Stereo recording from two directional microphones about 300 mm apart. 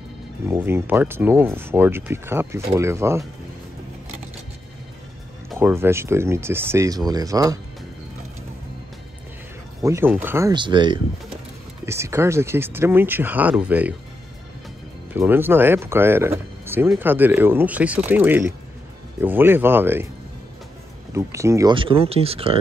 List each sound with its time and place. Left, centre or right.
0.5 s speech: centre
5.5 s speech: centre
9.8 s speech: centre
15.1 s speech: centre
21.1 s speech: centre